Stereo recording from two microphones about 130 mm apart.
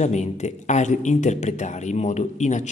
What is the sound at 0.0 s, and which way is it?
A man's voice, 60° left (ahead or behind).